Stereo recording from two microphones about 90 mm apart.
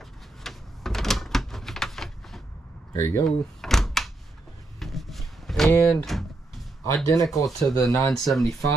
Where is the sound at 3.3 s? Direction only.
5° left (ahead or behind).